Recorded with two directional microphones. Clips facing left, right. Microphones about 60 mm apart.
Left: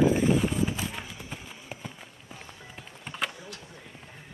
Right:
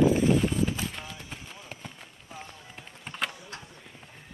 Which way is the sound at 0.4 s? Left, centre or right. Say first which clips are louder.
Even; centre.